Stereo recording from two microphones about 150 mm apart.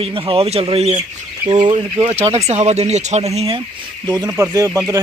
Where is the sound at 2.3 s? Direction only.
45° right (ahead or behind).